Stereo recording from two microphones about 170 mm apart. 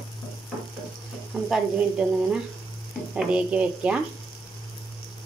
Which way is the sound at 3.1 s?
5° right (ahead or behind).